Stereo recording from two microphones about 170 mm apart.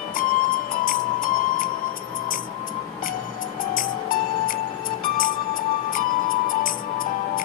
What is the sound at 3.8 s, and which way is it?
Music, 55° left (ahead or behind).